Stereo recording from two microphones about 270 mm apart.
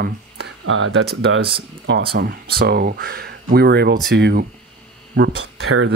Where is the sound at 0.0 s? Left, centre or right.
Right.